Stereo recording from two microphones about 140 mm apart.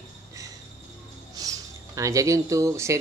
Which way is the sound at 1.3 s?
25° right (ahead or behind).